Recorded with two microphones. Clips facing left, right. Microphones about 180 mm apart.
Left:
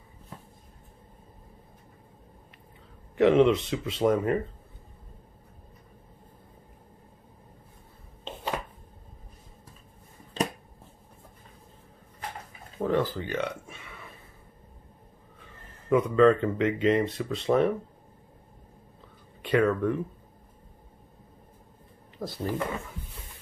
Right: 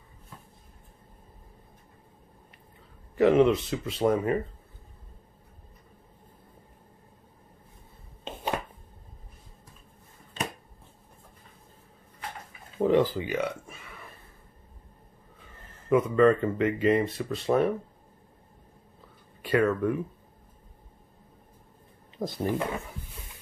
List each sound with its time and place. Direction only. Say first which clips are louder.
3.2 s speech: even; centre (ahead or behind)
12.7 s a sound: right 4 dB; 15° right (ahead or behind); by 14.0 s centre (ahead or behind)
15.9 s speech: left 1 dB; centre (ahead or behind)
19.4 s speech: even; 5° right (ahead or behind)
22.2 s speech: right 3 dB; 20° right (ahead or behind)